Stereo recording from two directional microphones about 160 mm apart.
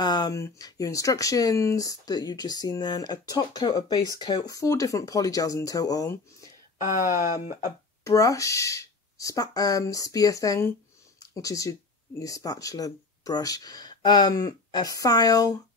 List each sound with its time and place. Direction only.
0.0 s speech: 25° left (ahead or behind)
7.6 s speech: 20° left (ahead or behind)